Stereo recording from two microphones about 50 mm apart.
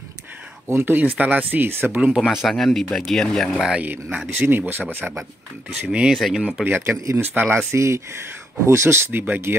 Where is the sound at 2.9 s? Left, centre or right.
Centre.